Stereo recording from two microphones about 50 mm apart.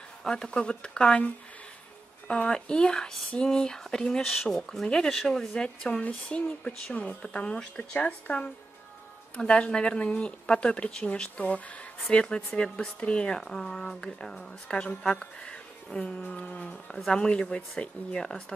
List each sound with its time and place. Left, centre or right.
0.2 s speech: centre
2.2 s speech: left
4.2 s speech: centre
13.5 s speech: centre
16.9 s speech: centre